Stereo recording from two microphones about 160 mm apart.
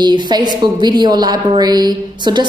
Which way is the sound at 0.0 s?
30° right (ahead or behind).